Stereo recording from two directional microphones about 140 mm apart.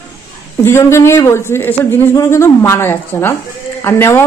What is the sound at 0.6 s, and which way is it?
A woman's voice, 20° left (ahead or behind).